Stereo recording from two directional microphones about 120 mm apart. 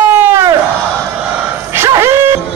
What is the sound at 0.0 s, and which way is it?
Crowd, 20° right (ahead or behind).